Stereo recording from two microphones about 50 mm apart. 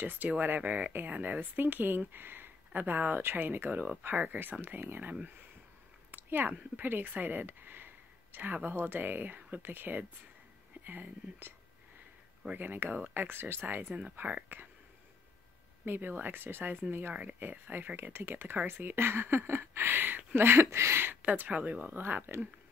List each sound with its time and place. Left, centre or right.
0.0 s speech: right
6.1 s a sound: right
6.8 s speech: right
12.5 s speech: right
15.8 s speech: right
17.1 s speech: right
17.4 s speech: right
20.3 s a sound: right
21.0 s speech: right
22.0 s speech: right